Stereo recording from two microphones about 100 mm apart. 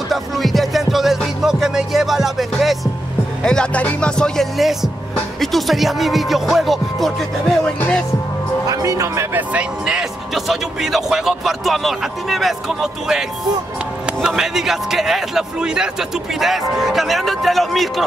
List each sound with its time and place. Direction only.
0.1 s music: centre (ahead or behind)
3.4 s speech: 10° left (ahead or behind)
8.6 s speech: 35° right (ahead or behind)
9.5 s speech: 10° right (ahead or behind)
14.2 s speech: 5° right (ahead or behind)